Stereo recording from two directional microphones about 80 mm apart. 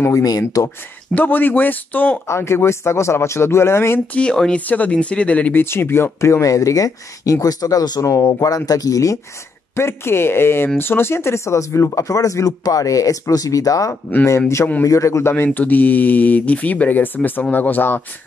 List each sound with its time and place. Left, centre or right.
0.1 s speech: left
1.1 s speech: left
2.2 s speech: left
4.1 s speech: centre
5.6 s speech: left
6.4 s speech: left
9.8 s speech: left
15.3 s speech: left